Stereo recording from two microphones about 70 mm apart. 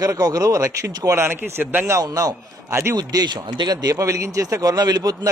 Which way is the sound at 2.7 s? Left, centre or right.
Right.